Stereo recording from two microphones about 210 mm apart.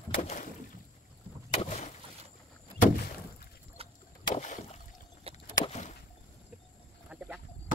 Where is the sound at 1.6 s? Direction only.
30° left (ahead or behind).